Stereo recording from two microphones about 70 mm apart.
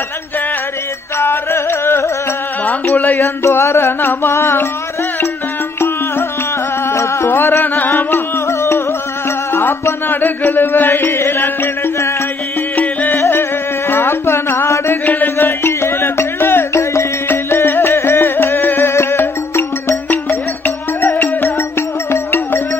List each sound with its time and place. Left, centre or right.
1.1 s music: left
2.6 s speech: left
3.2 s music: left
6.9 s music: left
8.5 s music: left